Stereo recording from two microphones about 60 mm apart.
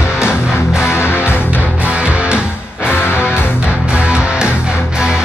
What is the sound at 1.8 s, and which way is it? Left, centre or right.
Music, centre.